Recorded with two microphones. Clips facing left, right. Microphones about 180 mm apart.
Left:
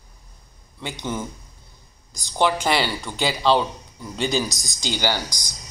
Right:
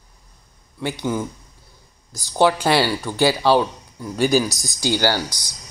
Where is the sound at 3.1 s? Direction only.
15° left (ahead or behind).